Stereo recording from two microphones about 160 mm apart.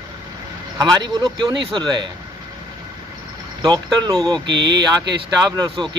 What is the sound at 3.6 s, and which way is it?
Speech, 25° right (ahead or behind).